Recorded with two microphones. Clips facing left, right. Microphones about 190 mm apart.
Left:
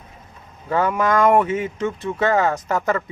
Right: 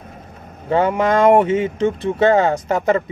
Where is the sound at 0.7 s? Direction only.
25° right (ahead or behind).